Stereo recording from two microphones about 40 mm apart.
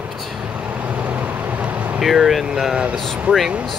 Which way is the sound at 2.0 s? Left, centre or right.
Centre.